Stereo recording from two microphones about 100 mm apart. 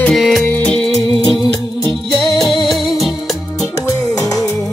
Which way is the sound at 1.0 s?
45° left (ahead or behind).